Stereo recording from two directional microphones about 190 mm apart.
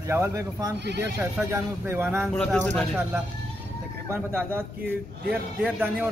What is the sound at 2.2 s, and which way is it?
Speech, 5° left (ahead or behind).